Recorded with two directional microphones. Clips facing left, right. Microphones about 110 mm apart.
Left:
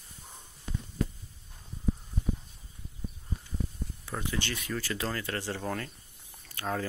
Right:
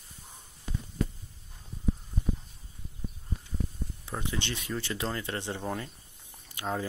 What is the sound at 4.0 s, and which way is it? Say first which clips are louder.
Speech: left 1 dB; 20° right (ahead or behind).